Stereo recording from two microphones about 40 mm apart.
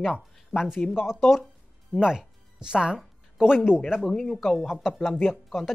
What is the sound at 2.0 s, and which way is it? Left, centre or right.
Speech, centre.